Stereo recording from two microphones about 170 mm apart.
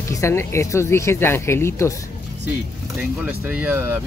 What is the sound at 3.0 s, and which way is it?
Speech, 10° right (ahead or behind).